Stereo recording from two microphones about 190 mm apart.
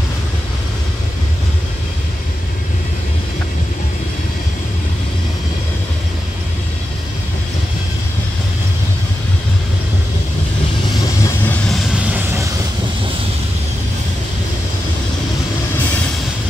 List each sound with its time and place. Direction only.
11.2 s vehicle: 10° left (ahead or behind)
12.0 s vehicle: 10° right (ahead or behind)